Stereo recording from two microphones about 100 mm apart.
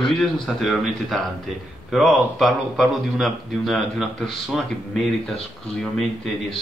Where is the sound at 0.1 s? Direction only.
Centre (ahead or behind).